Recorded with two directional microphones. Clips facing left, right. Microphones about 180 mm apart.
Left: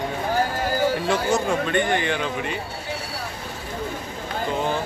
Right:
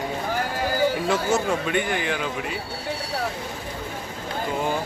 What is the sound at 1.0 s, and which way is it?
Speech, 5° right (ahead or behind).